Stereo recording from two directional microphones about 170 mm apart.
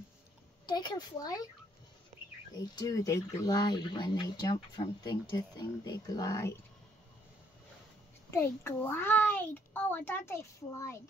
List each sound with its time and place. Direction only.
0.7 s speech: 25° left (ahead or behind)
2.5 s speech: 20° left (ahead or behind)
8.3 s a child's voice: 15° left (ahead or behind)